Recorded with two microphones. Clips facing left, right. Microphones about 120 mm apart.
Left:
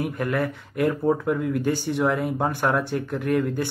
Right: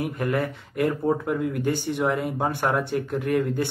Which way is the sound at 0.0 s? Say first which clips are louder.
Even; 25° right (ahead or behind).